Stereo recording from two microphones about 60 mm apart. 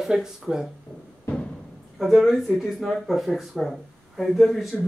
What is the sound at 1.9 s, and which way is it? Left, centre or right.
Speech, centre.